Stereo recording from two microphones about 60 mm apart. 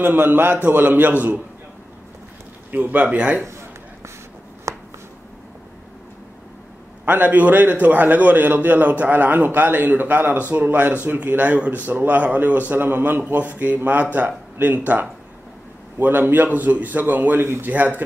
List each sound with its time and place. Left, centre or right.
0.0 s a man's voice: right
2.7 s speech: right
4.7 s a sound: right
7.1 s a man's voice: right
16.0 s a man's voice: right